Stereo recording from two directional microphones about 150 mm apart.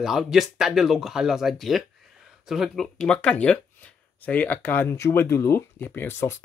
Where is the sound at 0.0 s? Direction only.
Centre (ahead or behind).